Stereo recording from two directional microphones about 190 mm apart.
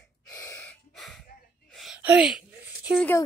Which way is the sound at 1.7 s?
Centre (ahead or behind).